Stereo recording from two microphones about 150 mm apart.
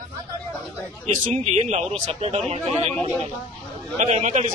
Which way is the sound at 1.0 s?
50° right (ahead or behind).